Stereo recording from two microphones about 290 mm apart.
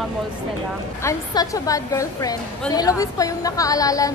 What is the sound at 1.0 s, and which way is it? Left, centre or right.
A woman's voice, centre.